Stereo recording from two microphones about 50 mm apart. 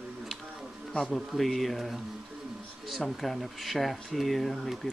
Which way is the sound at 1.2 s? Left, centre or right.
Centre.